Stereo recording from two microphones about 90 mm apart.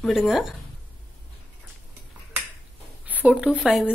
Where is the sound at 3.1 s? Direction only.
20° right (ahead or behind).